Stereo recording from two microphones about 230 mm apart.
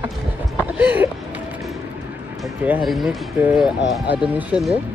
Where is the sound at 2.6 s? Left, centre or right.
Centre.